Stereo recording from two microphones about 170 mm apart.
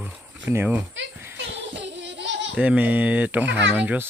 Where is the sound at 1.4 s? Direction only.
90° right.